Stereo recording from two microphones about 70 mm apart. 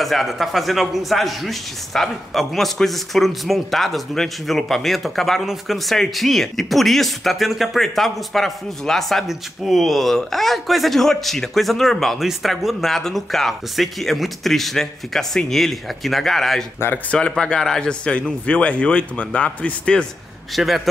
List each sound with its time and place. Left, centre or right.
0.0 s speech: centre
17.1 s speech: centre
20.5 s speech: centre